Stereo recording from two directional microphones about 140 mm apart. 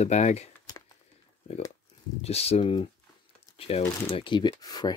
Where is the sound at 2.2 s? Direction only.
45° left (ahead or behind); by 5.0 s 30° left (ahead or behind).